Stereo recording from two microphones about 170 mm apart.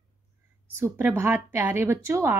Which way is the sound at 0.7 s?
15° right (ahead or behind).